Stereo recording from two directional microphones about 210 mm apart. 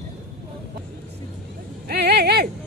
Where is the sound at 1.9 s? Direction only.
50° right (ahead or behind).